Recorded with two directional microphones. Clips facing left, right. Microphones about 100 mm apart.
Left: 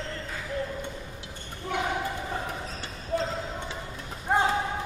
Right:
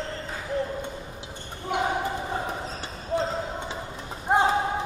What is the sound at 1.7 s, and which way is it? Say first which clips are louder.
Basketball bounce: right 3 dB; 20° right (ahead or behind).